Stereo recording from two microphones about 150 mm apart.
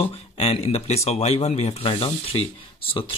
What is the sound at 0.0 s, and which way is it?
Speech, 40° left (ahead or behind).